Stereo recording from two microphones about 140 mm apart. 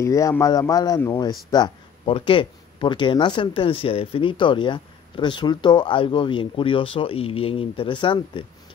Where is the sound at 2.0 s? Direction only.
40° left (ahead or behind).